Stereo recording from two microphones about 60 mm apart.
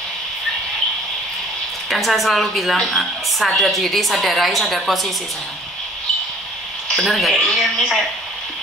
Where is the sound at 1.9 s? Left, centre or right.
Centre.